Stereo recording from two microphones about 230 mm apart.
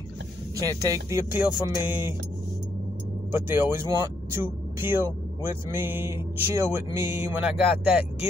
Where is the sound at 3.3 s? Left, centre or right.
Centre.